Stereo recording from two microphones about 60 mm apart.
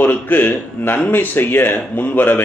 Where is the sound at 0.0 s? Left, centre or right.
Left.